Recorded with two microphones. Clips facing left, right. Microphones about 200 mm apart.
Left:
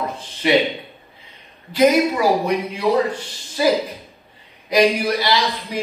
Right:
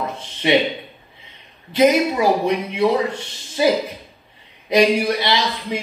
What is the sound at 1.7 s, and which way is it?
A man's voice, 25° right (ahead or behind).